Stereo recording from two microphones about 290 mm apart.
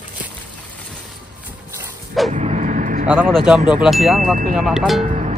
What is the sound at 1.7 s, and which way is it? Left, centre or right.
Dog, centre.